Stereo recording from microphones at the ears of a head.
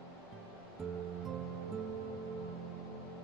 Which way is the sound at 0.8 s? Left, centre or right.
Right.